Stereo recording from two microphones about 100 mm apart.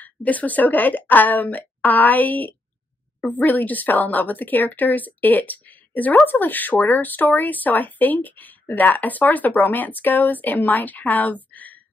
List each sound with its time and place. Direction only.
0.0 s speech: 15° left (ahead or behind)